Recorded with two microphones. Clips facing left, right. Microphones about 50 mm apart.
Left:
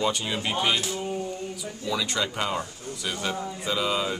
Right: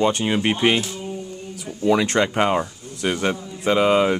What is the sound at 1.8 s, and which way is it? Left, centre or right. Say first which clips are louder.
Speech: right 10 dB; right.